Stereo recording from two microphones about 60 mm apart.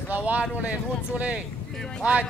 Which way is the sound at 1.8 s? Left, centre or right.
Centre.